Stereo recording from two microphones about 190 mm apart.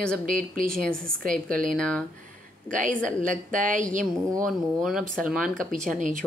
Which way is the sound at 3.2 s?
45° right (ahead or behind).